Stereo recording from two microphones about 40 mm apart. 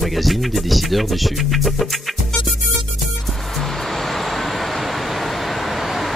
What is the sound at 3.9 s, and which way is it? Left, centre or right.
Vehicle, centre.